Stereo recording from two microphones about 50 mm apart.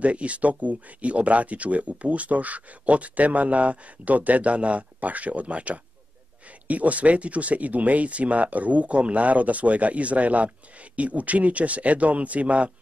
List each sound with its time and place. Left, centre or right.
0.0 s speech: right